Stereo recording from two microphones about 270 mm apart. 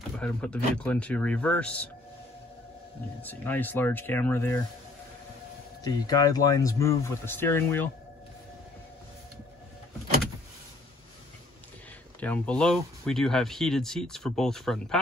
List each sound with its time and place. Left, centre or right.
0.2 s speech: centre
3.2 s speech: centre
5.9 s speech: centre
12.2 s speech: centre